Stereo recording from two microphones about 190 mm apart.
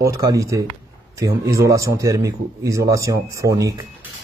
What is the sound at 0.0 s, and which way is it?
A man's voice, 15° right (ahead or behind).